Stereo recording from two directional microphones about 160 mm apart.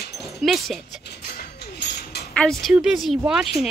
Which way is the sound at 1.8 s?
90° left.